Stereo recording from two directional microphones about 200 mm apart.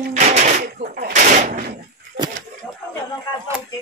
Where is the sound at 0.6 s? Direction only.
45° right (ahead or behind).